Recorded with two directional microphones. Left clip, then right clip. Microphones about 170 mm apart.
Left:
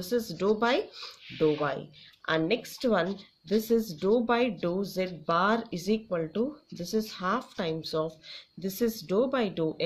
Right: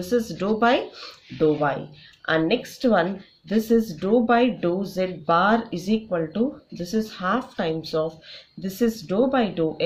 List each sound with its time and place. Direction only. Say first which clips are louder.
0.0 s a woman's voice: right 5 dB; 35° left (ahead or behind)